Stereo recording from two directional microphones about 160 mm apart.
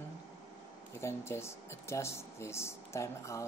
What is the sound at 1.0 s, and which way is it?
Speech, 15° left (ahead or behind).